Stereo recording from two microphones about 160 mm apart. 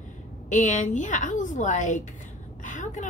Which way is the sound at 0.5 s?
50° left (ahead or behind).